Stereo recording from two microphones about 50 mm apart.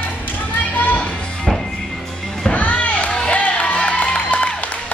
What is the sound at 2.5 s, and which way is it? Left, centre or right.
Music, left.